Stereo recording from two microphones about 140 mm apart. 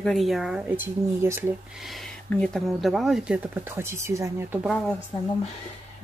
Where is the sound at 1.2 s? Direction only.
15° right (ahead or behind).